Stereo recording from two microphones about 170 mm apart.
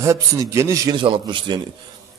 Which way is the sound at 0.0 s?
20° right (ahead or behind).